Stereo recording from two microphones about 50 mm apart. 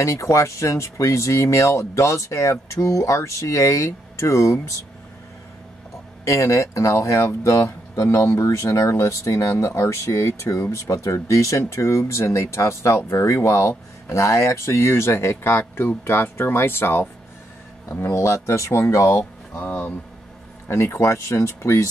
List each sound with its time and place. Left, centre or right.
0.0 s speech: left
6.2 s speech: left
18.1 s speech: left
19.6 s speech: left
20.6 s speech: left